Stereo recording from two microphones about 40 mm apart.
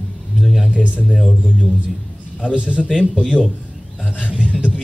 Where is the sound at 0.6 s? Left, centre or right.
Right.